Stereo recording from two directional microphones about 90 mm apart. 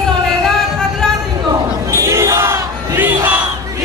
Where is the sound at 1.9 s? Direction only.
35° right (ahead or behind).